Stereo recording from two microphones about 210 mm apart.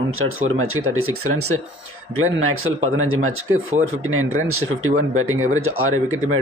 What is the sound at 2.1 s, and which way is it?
Speech, 80° right.